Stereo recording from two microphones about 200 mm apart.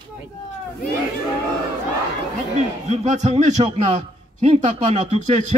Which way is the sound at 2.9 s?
35° right (ahead or behind).